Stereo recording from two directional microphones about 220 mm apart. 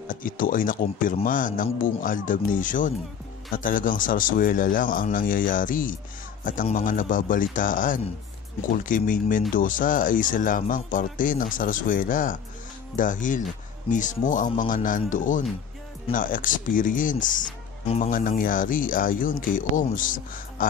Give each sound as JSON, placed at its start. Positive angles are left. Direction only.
{"t": 0.1, "sound": "speech", "side_deg": 40}